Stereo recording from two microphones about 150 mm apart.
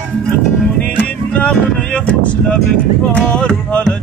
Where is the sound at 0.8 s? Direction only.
10° left (ahead or behind).